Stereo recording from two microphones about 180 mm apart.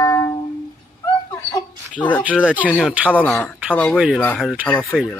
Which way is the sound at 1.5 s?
10° left (ahead or behind).